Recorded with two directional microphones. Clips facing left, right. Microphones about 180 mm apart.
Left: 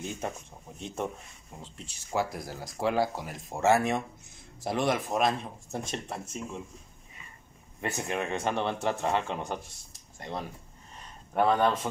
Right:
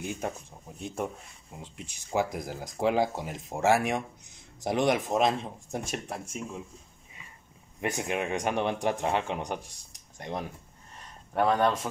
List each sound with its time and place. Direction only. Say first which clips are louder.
0.7 s speech: right 1 dB; 10° right (ahead or behind)
5.9 s speech: right 1 dB; 10° right (ahead or behind)
7.8 s speech: right 2 dB; 15° right (ahead or behind)
11.3 s speech: even; centre (ahead or behind)